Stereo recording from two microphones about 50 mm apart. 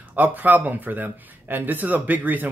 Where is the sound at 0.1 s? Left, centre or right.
Right.